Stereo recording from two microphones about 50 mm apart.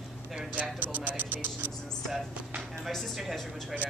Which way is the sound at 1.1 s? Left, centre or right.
Right.